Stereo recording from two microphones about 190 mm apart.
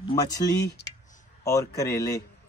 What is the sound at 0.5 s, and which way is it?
Speech, 60° left (ahead or behind).